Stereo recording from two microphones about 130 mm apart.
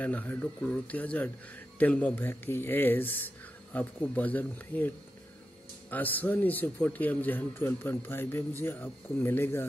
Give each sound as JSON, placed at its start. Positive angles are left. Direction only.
{"t": 0.0, "sound": "speech", "side_deg": 10}